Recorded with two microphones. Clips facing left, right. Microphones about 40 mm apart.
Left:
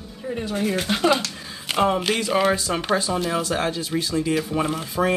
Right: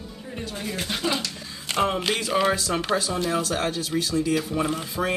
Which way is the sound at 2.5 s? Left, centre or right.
Left.